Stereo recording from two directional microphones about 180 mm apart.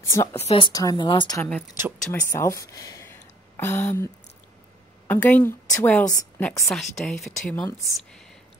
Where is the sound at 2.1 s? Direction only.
15° left (ahead or behind).